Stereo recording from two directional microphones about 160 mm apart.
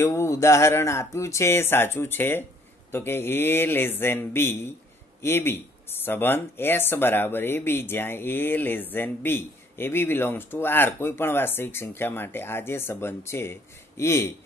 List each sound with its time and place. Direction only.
0.0 s speech: 15° left (ahead or behind)